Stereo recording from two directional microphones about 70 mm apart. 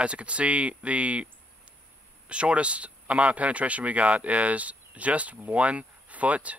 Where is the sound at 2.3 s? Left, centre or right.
Centre.